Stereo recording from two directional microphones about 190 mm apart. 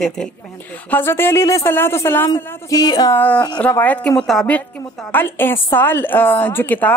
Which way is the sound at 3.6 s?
10° left (ahead or behind).